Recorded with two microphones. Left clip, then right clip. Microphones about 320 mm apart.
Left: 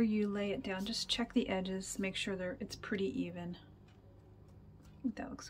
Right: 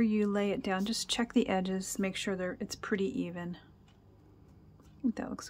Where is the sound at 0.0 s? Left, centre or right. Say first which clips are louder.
Right 5 dB; centre.